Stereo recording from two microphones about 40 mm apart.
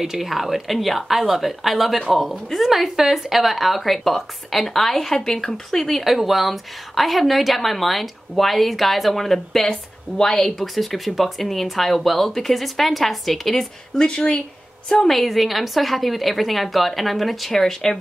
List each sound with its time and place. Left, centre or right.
0.0 s a woman's voice: centre
6.0 s a woman's voice: centre
10.7 s a woman's voice: centre
13.9 s speech: left
15.0 s a woman's voice: centre